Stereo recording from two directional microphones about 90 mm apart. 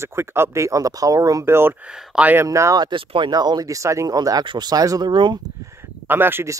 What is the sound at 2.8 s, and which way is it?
Speech, 70° right (ahead or behind).